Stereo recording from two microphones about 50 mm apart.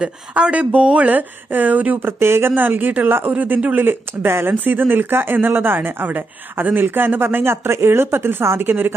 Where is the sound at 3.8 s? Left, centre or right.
Right.